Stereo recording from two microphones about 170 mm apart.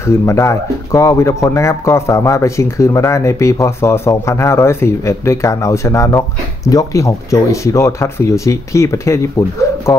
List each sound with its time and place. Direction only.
0.0 s speech: 15° left (ahead or behind)